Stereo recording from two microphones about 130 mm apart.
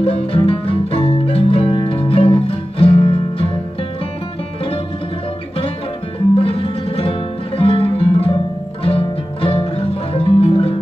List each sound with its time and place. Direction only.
0.0 s music: 50° left (ahead or behind)
6.3 s music: 45° left (ahead or behind)